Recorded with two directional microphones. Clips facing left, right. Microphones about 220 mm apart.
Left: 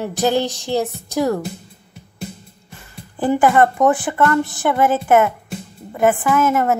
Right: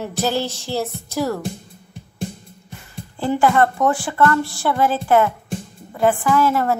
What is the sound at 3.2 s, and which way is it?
A woman's voice, 15° left (ahead or behind).